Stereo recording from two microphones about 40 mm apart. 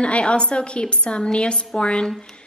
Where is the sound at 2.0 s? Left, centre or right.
Centre.